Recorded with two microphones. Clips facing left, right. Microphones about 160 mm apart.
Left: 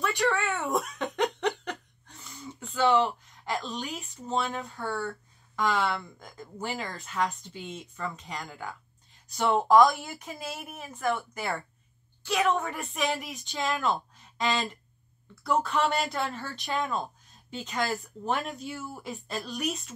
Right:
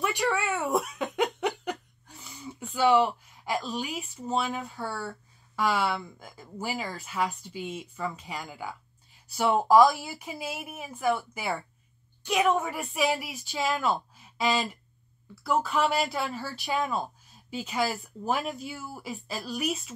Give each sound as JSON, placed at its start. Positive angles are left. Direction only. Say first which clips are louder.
{"t": 0.5, "sound": "laughter", "louder": "right 2 dB", "side_deg": 0}
{"t": 5.6, "sound": "speech", "louder": "right 1 dB", "side_deg": -5}
{"t": 12.2, "sound": "a woman's voice", "louder": "right 1 dB", "side_deg": -15}
{"t": 12.4, "sound": "speech", "louder": "right 2 dB", "side_deg": -5}